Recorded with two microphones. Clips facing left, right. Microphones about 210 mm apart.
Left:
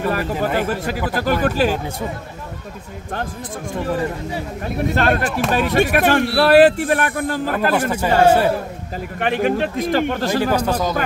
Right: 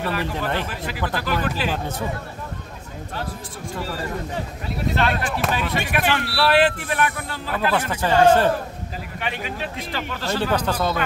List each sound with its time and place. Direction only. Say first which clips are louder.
0.1 s speech: left 5 dB; 45° left (ahead or behind)
4.6 s speech: left 5 dB; 50° left (ahead or behind)
7.7 s speech: left 1 dB; 10° left (ahead or behind)
9.2 s speech: left 11 dB; 50° left (ahead or behind)
10.5 s speech: left 3 dB; 10° left (ahead or behind)